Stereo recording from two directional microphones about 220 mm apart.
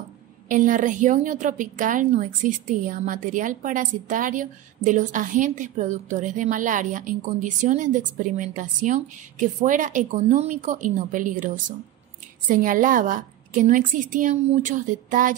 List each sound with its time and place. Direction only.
0.5 s a woman's voice: 35° right (ahead or behind)